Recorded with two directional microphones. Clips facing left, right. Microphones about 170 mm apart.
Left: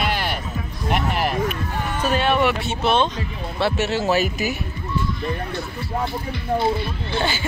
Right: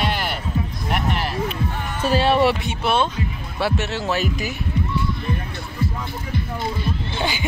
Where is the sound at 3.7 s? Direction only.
Centre (ahead or behind).